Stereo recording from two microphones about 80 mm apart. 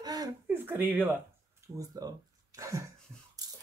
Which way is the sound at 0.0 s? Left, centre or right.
Right.